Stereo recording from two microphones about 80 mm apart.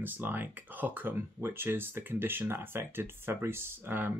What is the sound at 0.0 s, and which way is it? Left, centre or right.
Speech, right.